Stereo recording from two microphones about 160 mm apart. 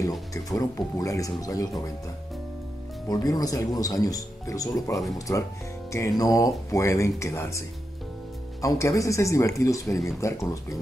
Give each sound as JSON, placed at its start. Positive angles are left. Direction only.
{"t": 0.3, "sound": "speech", "side_deg": 20}
{"t": 3.1, "sound": "speech", "side_deg": 25}